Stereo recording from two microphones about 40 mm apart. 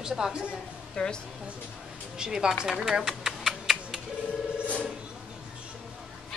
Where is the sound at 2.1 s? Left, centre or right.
Right.